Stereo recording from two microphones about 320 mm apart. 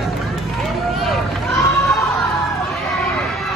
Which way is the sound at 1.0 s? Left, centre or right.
Centre.